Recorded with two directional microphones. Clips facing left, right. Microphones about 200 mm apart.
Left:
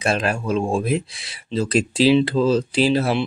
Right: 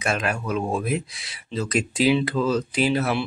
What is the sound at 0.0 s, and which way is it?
Speech, 30° left (ahead or behind).